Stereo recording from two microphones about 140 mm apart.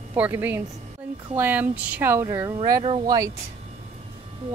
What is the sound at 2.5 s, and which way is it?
Speech, 30° right (ahead or behind).